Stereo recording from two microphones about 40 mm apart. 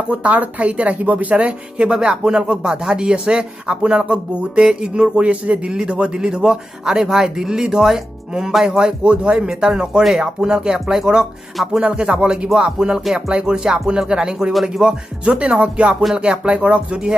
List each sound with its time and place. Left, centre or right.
0.1 s speech: right
5.6 s speech: right
9.0 s speech: right
9.3 s speech: centre
14.9 s speech: right